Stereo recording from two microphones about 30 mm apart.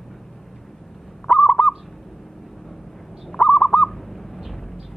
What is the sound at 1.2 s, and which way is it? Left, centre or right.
Owl, left.